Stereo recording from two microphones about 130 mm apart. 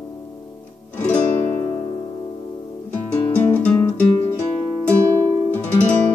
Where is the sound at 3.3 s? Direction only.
15° left (ahead or behind).